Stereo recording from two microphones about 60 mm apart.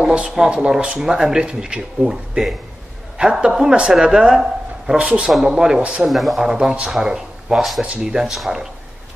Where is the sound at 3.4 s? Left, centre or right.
Centre.